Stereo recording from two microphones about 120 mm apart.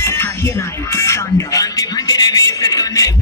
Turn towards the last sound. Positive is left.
turn(degrees=30)  # may be behind; listen again after turning